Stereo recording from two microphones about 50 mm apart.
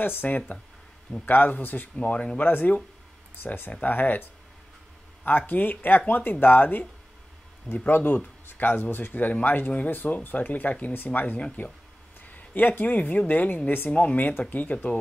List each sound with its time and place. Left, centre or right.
0.0 s speech: left
2.0 s speech: left
3.8 s speech: left
5.5 s speech: left
7.9 s a man's voice: left